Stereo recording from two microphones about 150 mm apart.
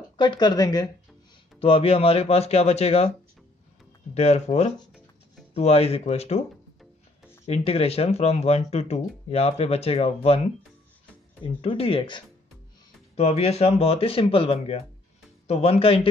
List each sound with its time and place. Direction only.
0.2 s speech: 30° left (ahead or behind)
1.6 s speech: 40° left (ahead or behind)
4.1 s speech: 45° left (ahead or behind)
7.4 s speech: 40° left (ahead or behind)